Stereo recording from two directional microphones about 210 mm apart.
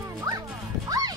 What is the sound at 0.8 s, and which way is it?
Music, 15° right (ahead or behind).